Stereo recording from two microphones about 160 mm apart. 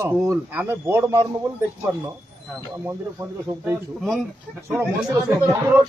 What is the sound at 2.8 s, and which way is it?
Speech, 15° right (ahead or behind).